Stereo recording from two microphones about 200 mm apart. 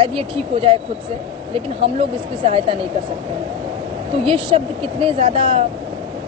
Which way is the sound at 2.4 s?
30° right (ahead or behind).